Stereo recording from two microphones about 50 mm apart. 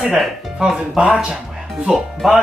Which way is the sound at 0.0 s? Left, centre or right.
Centre.